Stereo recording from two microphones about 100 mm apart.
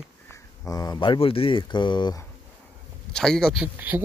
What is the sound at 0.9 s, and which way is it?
Speech, 55° left (ahead or behind).